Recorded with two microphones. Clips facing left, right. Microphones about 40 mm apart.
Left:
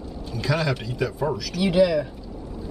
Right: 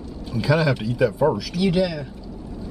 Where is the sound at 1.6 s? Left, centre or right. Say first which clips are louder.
Left 2 dB; centre.